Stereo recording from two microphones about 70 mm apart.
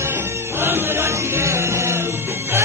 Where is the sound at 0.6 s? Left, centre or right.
Right.